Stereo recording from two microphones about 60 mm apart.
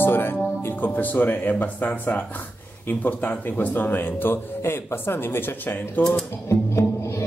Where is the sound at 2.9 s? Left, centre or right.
Left.